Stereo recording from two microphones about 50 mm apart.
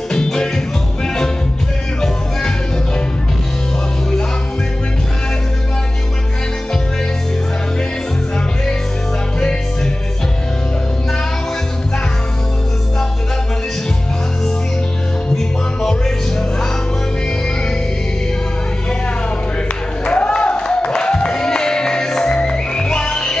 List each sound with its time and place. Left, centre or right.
0.1 s music: centre
15.3 s music: centre
20.1 s music: centre